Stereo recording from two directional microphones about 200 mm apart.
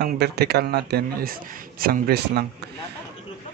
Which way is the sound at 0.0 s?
55° right (ahead or behind).